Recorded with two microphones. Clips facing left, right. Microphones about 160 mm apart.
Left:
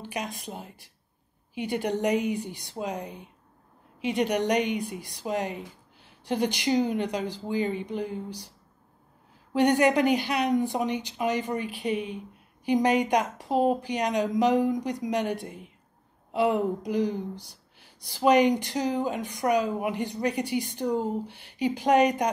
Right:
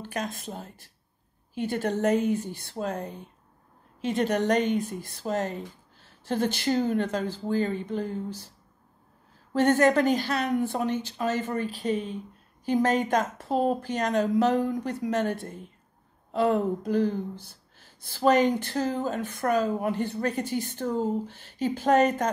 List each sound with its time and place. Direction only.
0.0 s speech: 15° left (ahead or behind)